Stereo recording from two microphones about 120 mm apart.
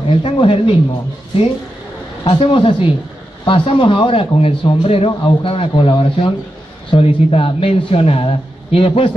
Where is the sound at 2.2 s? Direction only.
50° left (ahead or behind).